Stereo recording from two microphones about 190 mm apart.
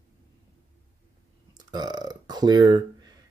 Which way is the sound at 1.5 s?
20° right (ahead or behind).